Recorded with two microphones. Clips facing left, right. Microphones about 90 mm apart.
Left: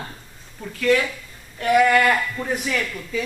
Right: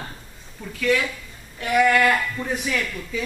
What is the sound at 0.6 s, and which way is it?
Speech, 5° left (ahead or behind).